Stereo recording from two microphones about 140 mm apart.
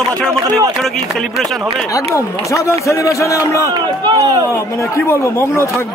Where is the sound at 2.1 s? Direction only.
20° left (ahead or behind).